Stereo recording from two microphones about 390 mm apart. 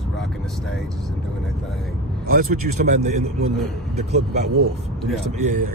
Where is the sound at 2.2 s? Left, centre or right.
Right.